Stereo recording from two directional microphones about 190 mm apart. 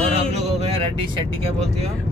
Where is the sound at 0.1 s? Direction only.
30° right (ahead or behind).